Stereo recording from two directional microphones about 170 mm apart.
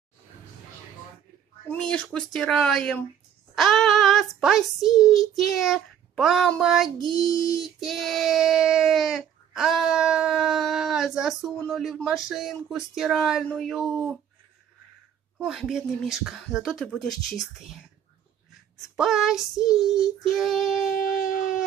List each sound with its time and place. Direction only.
1.7 s speech: 5° left (ahead or behind)
7.2 s speech: 20° left (ahead or behind)
7.8 s speech: centre (ahead or behind)
15.3 s speech: centre (ahead or behind)
18.9 s speech: centre (ahead or behind)
21.2 s a sound: 50° left (ahead or behind)